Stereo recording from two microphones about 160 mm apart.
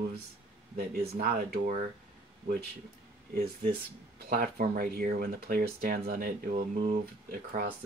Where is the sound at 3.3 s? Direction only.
65° right (ahead or behind).